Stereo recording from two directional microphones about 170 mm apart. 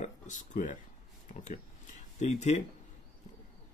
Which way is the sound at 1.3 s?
45° left (ahead or behind).